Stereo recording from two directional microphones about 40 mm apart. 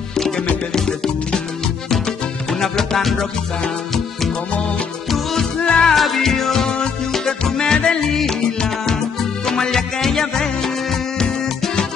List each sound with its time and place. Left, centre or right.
0.7 s music: centre
2.6 s music: centre
5.6 s music: left
5.9 s music: centre